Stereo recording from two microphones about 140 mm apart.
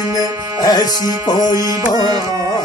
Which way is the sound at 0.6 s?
30° left (ahead or behind).